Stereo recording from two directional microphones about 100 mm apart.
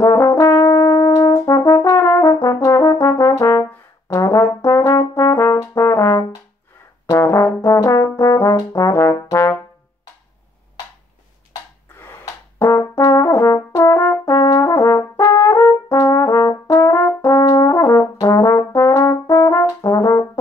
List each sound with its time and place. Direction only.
0.0 s brass instrument: 25° left (ahead or behind)
12.0 s brass instrument: 25° left (ahead or behind)